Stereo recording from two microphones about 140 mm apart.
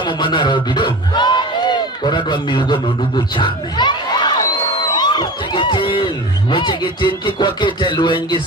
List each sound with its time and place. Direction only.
0.0 s a man's voice: 35° left (ahead or behind)